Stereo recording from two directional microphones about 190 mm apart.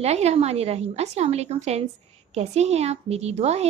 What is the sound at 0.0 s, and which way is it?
Speech, 35° right (ahead or behind).